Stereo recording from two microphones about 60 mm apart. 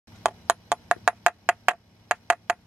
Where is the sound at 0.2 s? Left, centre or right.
Centre.